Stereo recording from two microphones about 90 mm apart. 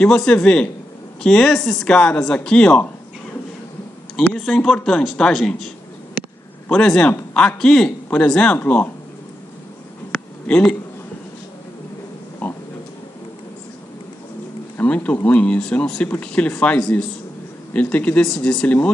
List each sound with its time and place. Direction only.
0.0 s speech: 5° left (ahead or behind)
4.4 s speech: 5° left (ahead or behind)
6.2 s a sound: 15° right (ahead or behind)
6.7 s speech: 5° left (ahead or behind)
10.4 s speech: 10° left (ahead or behind)
12.4 s oink: 15° left (ahead or behind)
14.8 s speech: 20° left (ahead or behind)